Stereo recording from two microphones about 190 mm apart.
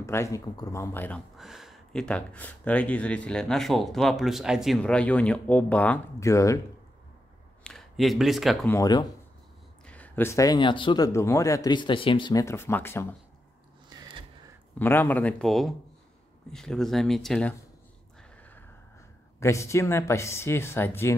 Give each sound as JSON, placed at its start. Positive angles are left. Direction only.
{"t": 0.0, "sound": "speech", "side_deg": 15}
{"t": 1.4, "sound": "speech", "side_deg": 0}
{"t": 7.6, "sound": "speech", "side_deg": 0}
{"t": 8.6, "sound": "speech", "side_deg": 15}
{"t": 13.9, "sound": "a sound", "side_deg": -25}
{"t": 14.8, "sound": "speech", "side_deg": 10}
{"t": 18.4, "sound": "a sound", "side_deg": 10}
{"t": 19.4, "sound": "speech", "side_deg": 15}